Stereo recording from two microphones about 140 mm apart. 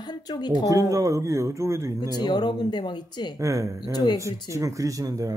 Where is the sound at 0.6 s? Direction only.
25° right (ahead or behind).